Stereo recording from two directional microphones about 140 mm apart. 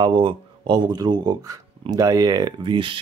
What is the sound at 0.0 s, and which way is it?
Speech, 35° right (ahead or behind).